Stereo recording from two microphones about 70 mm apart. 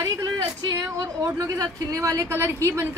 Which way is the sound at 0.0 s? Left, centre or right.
Right.